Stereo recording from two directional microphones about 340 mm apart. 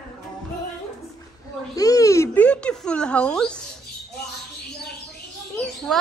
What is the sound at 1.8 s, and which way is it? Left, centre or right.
Speech, centre.